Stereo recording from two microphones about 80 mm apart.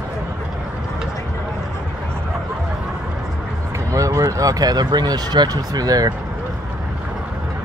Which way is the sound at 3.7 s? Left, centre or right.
Right.